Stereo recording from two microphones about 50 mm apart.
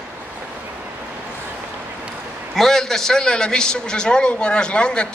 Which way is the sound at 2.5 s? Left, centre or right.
Centre.